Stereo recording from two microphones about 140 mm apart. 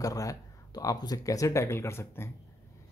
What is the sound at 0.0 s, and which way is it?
Speech, 25° left (ahead or behind).